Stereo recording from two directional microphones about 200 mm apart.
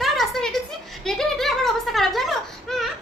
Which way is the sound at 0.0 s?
Centre (ahead or behind).